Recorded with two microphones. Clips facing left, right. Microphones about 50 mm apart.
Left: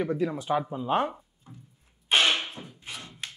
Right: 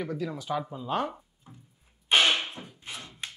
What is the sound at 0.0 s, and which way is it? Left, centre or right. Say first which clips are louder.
Speech: left 5 dB; left.